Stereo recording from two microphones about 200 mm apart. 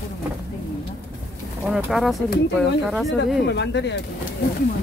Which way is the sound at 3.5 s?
60° left (ahead or behind).